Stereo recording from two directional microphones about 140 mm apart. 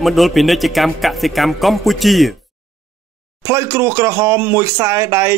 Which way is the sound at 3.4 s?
20° right (ahead or behind).